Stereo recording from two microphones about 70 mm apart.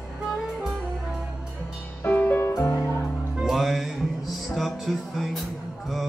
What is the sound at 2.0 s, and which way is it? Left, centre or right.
Music, left.